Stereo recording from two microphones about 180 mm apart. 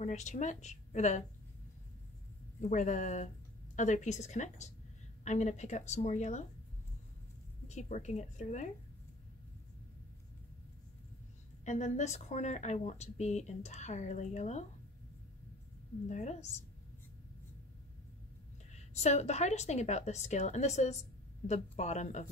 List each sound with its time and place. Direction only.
0.0 s speech: 40° left (ahead or behind)
2.7 s speech: 40° left (ahead or behind)
7.6 s speech: 40° left (ahead or behind)
11.6 s speech: 40° left (ahead or behind)
16.1 s speech: 40° left (ahead or behind)
18.7 s speech: 40° left (ahead or behind)